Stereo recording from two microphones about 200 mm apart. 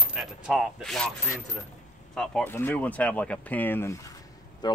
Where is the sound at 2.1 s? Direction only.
5° left (ahead or behind).